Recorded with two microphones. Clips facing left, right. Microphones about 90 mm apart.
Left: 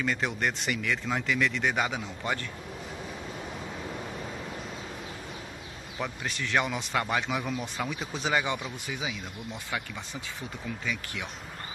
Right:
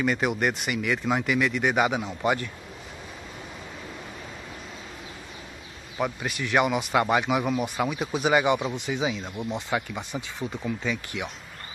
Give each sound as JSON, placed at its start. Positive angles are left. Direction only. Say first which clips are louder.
{"t": 0.0, "sound": "speech", "louder": "right 5 dB", "side_deg": -15}
{"t": 5.9, "sound": "speech", "louder": "right 6 dB", "side_deg": -15}